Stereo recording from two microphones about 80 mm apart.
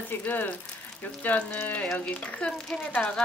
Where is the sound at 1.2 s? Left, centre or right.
Left.